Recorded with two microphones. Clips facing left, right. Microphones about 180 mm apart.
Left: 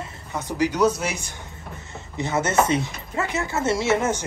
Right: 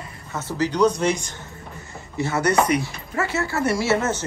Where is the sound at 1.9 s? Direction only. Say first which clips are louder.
Even; 20° left (ahead or behind).